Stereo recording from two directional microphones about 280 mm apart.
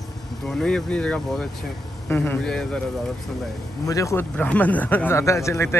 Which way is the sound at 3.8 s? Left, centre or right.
Centre.